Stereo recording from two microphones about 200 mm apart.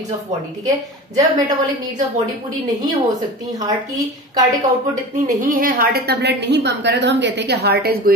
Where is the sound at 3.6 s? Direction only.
20° right (ahead or behind).